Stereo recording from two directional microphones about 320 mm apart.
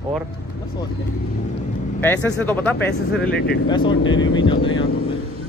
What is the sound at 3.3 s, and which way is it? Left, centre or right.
Speech, left.